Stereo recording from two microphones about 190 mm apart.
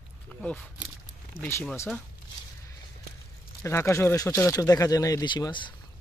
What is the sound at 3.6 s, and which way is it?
Speech, 15° left (ahead or behind).